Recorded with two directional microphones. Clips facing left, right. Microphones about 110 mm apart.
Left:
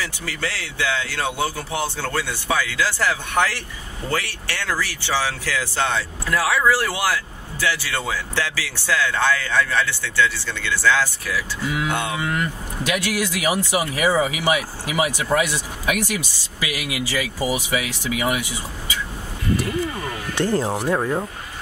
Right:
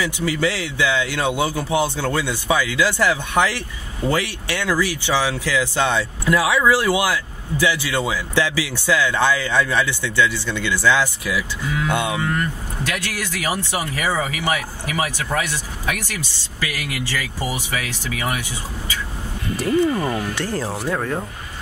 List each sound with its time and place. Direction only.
0.0 s a man's voice: 15° right (ahead or behind)
12.8 s speech: 15° left (ahead or behind)
20.3 s speech: 20° left (ahead or behind)